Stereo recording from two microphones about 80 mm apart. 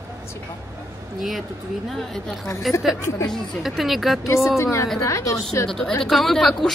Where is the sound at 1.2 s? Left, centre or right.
Centre.